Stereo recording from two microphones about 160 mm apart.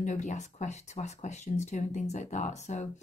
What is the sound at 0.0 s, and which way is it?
Speech, 50° left (ahead or behind).